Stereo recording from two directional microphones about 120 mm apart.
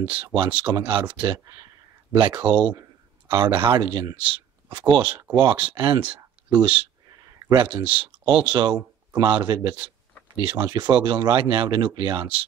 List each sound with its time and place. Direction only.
0.0 s speech: 45° right (ahead or behind)
2.1 s speech: 40° right (ahead or behind)
7.3 s a sound: 35° right (ahead or behind)
7.8 s speech: 45° right (ahead or behind)